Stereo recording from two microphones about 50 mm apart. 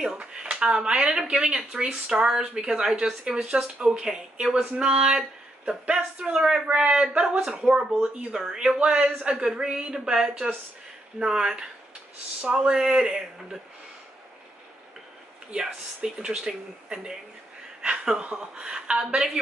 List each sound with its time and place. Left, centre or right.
0.2 s a man's voice: centre
7.2 s speech: centre
8.7 s a man's voice: right
11.1 s speech: centre
15.5 s speech: centre